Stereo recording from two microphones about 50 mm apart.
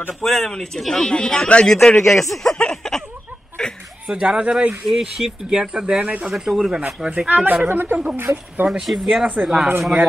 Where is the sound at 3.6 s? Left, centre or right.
Centre.